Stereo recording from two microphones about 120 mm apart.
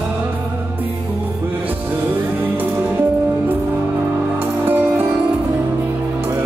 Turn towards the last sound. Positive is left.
turn(degrees=-15)  # may be behind; listen again after turning